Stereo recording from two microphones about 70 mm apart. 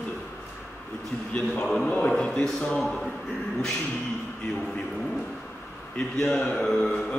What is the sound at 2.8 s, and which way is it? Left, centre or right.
Speech, centre.